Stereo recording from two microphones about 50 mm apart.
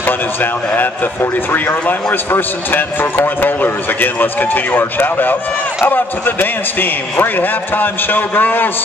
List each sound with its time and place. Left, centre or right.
0.0 s a man's voice: left